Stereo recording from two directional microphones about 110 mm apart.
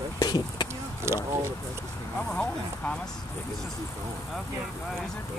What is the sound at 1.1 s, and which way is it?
Speech, 25° right (ahead or behind).